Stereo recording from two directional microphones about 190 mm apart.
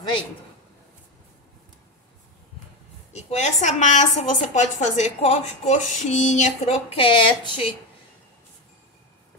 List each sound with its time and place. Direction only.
3.1 s a woman's voice: 35° left (ahead or behind)